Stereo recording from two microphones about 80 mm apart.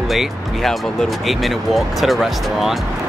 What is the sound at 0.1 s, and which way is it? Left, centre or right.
Speech, centre.